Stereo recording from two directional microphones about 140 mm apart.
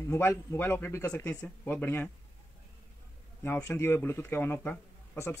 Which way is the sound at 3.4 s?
15° left (ahead or behind).